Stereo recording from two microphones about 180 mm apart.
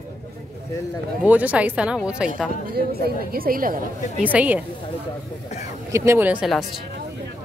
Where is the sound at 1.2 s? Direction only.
10° right (ahead or behind).